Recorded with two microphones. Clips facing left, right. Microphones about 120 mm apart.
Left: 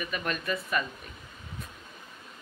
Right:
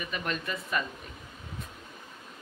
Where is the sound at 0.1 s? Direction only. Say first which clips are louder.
Left 1 dB; 25° right (ahead or behind).